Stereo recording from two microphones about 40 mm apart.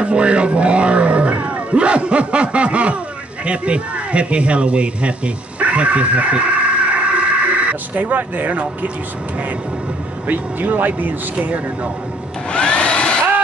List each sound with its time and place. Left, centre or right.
0.0 s roaring cats: right
3.4 s a man's voice: right
10.2 s speech: right
11.3 s speech: right
12.5 s a sound: left